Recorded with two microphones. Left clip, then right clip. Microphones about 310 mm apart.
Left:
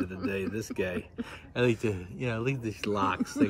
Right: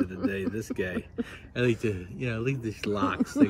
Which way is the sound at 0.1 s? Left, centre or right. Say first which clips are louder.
Right 2 dB; centre.